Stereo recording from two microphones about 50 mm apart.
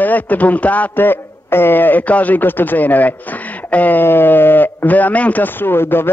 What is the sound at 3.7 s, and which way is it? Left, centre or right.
Sheep, left.